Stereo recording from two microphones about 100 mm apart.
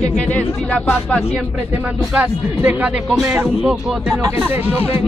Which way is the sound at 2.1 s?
10° right (ahead or behind).